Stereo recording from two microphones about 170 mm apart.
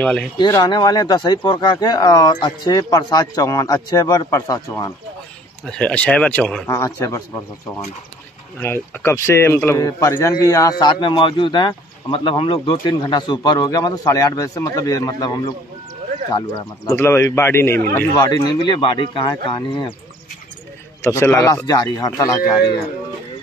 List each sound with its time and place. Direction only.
0.0 s speech: 5° left (ahead or behind)
0.5 s speech: 20° left (ahead or behind)
5.7 s a man's voice: 5° left (ahead or behind)
8.5 s a man's voice: 15° left (ahead or behind)
16.8 s a man's voice: 15° left (ahead or behind)
21.0 s speech: 15° left (ahead or behind)